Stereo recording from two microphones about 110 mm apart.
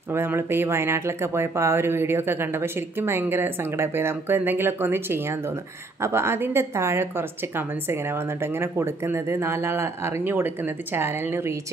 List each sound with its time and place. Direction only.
0.1 s speech: 20° right (ahead or behind)